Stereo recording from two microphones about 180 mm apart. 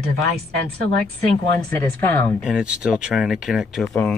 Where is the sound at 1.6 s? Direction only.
10° left (ahead or behind).